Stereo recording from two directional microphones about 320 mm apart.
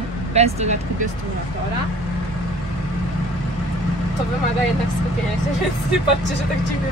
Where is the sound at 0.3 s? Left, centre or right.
Centre.